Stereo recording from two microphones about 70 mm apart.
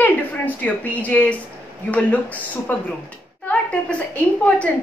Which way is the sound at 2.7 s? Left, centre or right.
Left.